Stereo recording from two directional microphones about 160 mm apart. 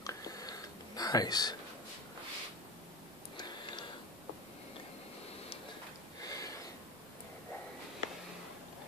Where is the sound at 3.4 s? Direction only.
30° left (ahead or behind).